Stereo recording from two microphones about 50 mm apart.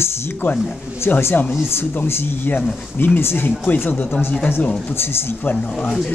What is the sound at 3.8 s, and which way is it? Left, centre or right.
Speech, left.